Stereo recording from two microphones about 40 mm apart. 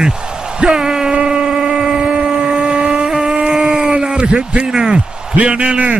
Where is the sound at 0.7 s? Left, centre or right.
Centre.